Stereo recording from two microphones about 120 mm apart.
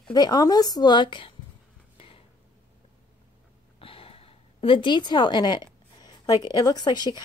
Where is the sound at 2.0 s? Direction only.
50° left (ahead or behind).